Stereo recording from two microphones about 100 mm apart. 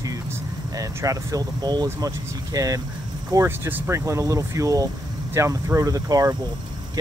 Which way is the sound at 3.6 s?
20° right (ahead or behind).